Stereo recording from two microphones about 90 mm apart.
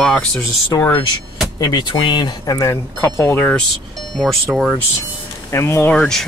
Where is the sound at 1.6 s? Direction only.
55° left (ahead or behind).